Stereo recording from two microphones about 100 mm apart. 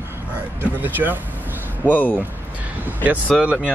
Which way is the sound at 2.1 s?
15° right (ahead or behind).